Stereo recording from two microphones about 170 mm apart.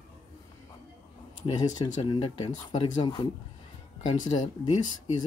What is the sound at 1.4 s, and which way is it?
Speech, 25° left (ahead or behind).